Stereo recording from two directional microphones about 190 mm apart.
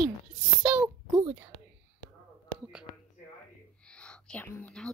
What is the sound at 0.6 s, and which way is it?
Speech, 5° right (ahead or behind).